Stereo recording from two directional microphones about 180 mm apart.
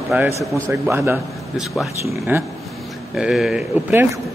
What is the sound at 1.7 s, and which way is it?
Speech, centre (ahead or behind).